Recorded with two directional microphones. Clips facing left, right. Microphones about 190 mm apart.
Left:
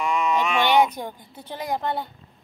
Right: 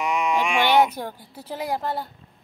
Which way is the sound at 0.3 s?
10° right (ahead or behind).